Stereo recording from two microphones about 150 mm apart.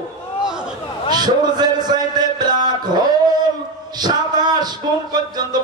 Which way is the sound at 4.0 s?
30° right (ahead or behind).